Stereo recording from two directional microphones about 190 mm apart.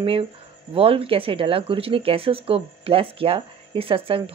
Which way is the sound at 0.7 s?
30° right (ahead or behind).